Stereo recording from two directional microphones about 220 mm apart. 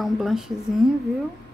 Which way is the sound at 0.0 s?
Centre (ahead or behind).